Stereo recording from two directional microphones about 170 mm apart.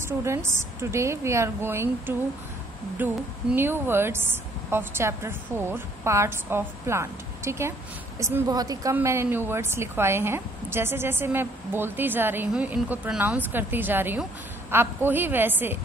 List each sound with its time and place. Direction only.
0.0 s a woman's voice: 15° right (ahead or behind)